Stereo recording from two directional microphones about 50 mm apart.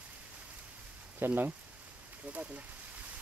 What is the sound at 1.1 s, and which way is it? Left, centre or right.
Speech, right.